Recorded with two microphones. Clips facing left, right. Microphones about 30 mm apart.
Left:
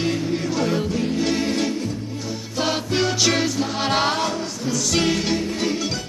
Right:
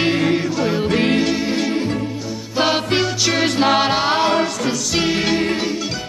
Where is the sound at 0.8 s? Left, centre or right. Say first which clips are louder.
Right 7 dB; right.